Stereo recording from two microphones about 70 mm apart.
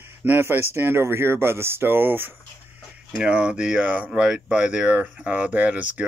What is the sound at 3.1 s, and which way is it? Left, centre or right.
Speech, centre.